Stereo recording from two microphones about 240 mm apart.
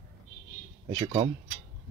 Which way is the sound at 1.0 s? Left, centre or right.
Right.